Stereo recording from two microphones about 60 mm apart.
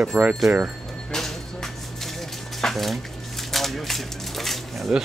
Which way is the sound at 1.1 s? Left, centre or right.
Centre.